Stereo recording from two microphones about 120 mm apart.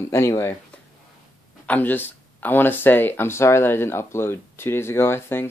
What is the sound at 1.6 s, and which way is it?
Speech, 15° left (ahead or behind).